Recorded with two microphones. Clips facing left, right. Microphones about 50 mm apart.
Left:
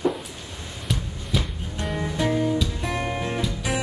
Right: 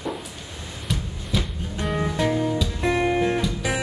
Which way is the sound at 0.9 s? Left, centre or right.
Centre.